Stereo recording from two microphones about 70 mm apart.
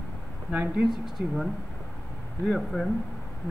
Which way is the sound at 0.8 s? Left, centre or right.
Centre.